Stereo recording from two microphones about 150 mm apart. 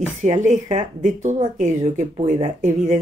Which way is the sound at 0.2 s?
55° right (ahead or behind).